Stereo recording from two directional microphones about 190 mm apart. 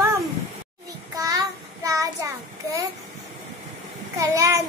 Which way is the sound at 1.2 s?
20° right (ahead or behind).